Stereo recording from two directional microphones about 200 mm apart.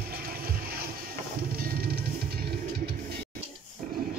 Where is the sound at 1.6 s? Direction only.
50° right (ahead or behind).